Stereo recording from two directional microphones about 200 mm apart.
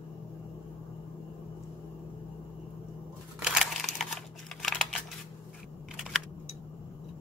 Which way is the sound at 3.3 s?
Centre (ahead or behind).